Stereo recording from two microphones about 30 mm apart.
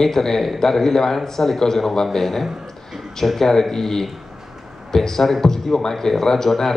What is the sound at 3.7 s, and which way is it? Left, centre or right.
Speech, centre.